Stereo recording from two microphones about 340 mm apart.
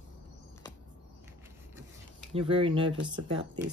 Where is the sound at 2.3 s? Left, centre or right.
Centre.